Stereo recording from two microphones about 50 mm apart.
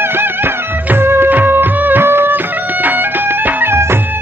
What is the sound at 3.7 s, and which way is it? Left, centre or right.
Music, right.